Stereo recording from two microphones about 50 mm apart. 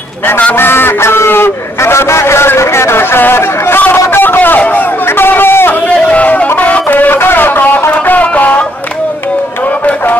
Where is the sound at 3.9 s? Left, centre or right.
Left.